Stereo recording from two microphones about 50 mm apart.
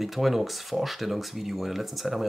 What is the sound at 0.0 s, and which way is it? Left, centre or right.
Speech, centre.